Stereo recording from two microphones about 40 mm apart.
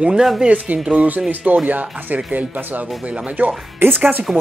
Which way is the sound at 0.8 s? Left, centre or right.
Right.